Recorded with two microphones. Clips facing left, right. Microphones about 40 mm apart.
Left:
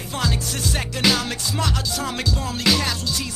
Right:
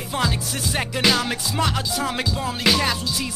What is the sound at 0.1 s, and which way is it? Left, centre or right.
Music, centre.